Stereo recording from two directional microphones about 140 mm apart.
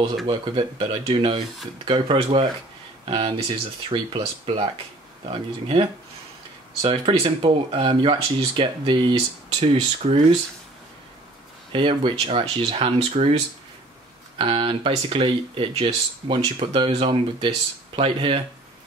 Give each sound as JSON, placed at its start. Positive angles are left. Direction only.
{"t": 0.3, "sound": "speech", "side_deg": -35}
{"t": 11.7, "sound": "speech", "side_deg": -40}
{"t": 14.4, "sound": "speech", "side_deg": -40}